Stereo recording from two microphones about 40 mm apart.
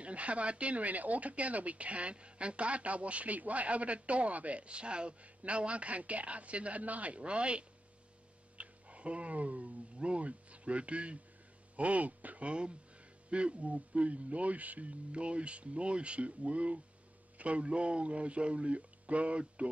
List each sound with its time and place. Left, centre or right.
0.0 s speech: right